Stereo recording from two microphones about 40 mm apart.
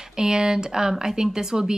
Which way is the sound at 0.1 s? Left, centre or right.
Centre.